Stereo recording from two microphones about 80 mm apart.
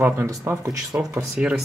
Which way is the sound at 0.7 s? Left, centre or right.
Right.